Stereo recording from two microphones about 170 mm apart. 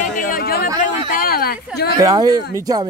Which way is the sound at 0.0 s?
60° left (ahead or behind).